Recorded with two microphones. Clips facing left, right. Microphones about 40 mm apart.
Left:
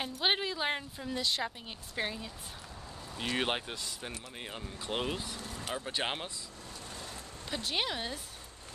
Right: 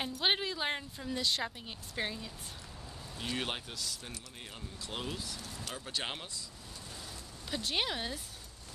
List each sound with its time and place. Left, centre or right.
0.0 s a woman's voice: centre
3.2 s speech: left
7.5 s a woman's voice: centre